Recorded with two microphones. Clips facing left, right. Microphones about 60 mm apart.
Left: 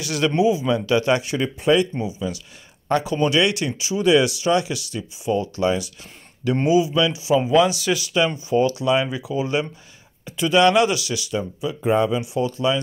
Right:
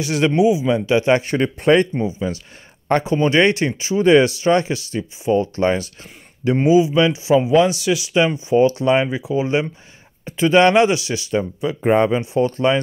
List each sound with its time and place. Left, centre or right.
0.0 s speech: right
0.3 s speech: centre
1.2 s speech: right
2.0 s speech: right
6.5 s speech: right
7.8 s speech: centre
8.4 s speech: right
11.6 s speech: right